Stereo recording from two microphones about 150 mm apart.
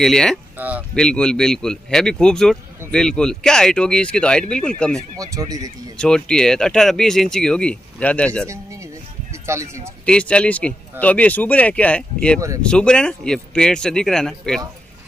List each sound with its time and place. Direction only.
0.0 s speech: 5° left (ahead or behind)
0.6 s speech: 10° right (ahead or behind)
0.9 s speech: 5° left (ahead or behind)
5.1 s speech: 25° right (ahead or behind)
5.9 s speech: 5° left (ahead or behind)
9.5 s speech: 20° right (ahead or behind)
10.0 s speech: 5° left (ahead or behind)